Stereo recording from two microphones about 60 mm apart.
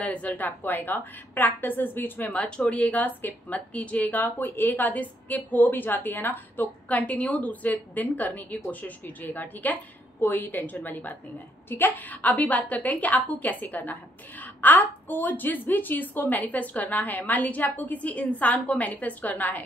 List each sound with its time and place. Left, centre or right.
0.0 s a woman's voice: left